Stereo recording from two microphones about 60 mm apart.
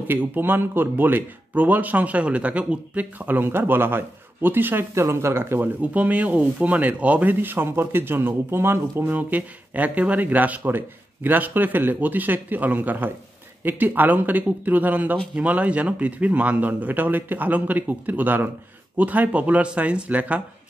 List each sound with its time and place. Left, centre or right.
0.1 s speech: right
4.9 s speech: right
5.6 s a man's voice: right
7.3 s speech: right
9.3 s a man's voice: right